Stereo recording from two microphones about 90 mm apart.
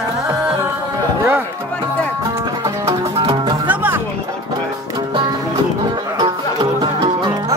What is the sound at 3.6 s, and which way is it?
Music, 20° right (ahead or behind).